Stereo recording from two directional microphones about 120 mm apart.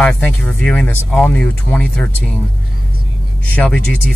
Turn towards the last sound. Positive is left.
turn(degrees=10)  # may be behind; listen again after turning